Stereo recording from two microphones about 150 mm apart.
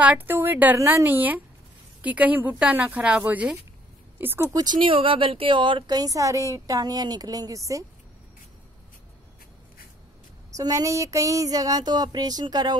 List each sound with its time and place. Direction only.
0.0 s speech: 10° right (ahead or behind)
10.5 s speech: 20° right (ahead or behind)